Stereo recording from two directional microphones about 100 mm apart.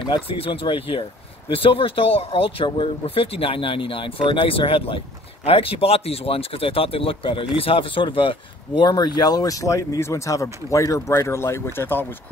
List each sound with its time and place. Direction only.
0.1 s speech: 60° left (ahead or behind); by 12.1 s 20° left (ahead or behind)